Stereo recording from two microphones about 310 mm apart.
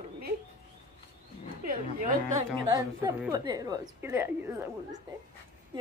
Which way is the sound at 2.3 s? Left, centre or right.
Centre.